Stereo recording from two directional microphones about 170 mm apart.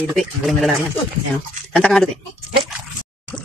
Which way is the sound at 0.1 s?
Centre (ahead or behind).